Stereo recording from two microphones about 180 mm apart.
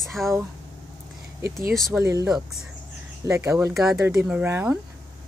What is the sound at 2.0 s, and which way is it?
Speech, 15° right (ahead or behind).